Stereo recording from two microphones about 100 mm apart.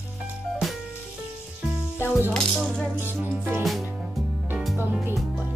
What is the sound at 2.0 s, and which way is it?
Music, 20° left (ahead or behind).